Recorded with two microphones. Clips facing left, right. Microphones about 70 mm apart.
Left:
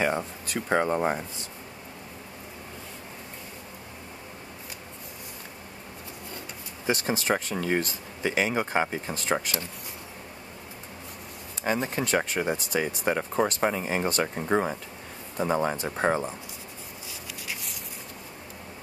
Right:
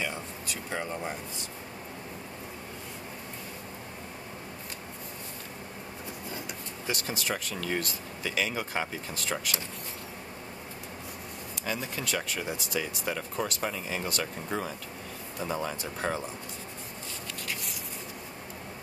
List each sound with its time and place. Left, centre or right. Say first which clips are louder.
0.0 s speech: left 8 dB; left
6.9 s speech: left 7 dB; left
11.6 s speech: left 7 dB; left